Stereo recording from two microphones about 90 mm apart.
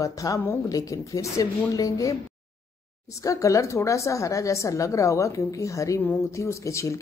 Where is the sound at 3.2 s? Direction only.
35° left (ahead or behind).